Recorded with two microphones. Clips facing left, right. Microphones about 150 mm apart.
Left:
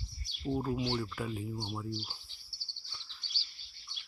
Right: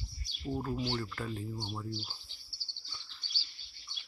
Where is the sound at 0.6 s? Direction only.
10° left (ahead or behind).